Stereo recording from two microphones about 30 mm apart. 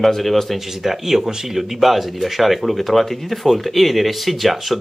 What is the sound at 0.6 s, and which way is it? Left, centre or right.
Speech, centre.